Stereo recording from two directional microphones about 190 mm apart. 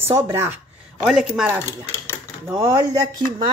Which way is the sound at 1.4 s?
10° right (ahead or behind).